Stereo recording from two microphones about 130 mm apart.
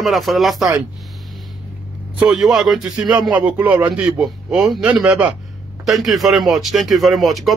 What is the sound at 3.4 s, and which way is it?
Speech, 10° right (ahead or behind).